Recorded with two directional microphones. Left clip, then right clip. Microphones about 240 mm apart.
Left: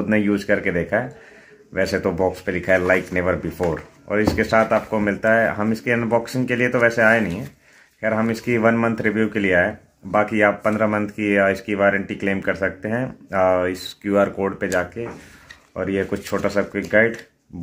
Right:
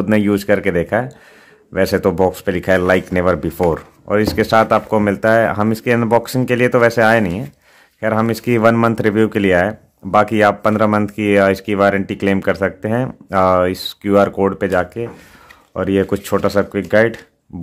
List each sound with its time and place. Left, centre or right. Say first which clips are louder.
0.1 s speech: right 5 dB; right